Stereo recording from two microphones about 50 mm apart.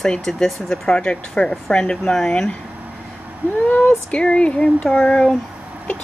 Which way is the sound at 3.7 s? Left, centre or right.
Left.